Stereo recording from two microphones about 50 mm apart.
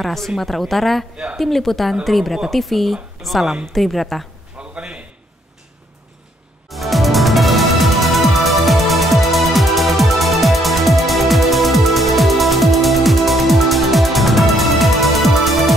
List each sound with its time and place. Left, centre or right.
0.0 s a woman's voice: centre
4.6 s a sound: right
6.7 s music: centre